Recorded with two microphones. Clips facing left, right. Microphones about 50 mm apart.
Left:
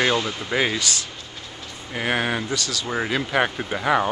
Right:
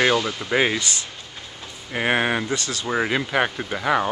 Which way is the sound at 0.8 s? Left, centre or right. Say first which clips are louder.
Left 1 dB; right.